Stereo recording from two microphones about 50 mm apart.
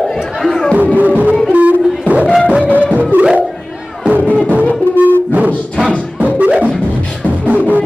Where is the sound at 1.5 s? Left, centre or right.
Right.